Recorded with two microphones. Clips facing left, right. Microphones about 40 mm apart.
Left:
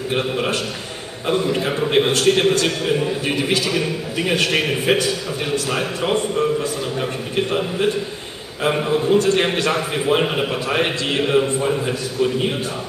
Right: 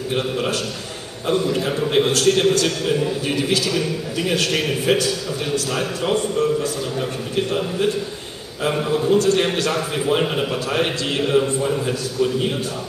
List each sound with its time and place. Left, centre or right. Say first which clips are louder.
0.1 s a man's voice: left 1 dB; left